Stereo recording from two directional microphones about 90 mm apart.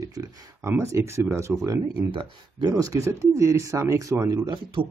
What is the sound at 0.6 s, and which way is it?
Speech, 30° right (ahead or behind).